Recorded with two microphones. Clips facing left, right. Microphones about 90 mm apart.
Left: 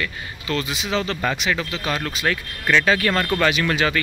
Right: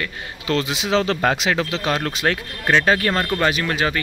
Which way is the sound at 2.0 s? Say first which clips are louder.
Right 2 dB; 50° right (ahead or behind).